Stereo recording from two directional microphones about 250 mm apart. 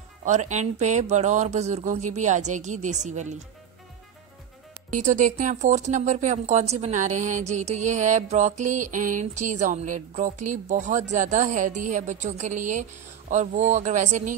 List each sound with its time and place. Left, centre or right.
0.2 s speech: right
4.9 s speech: right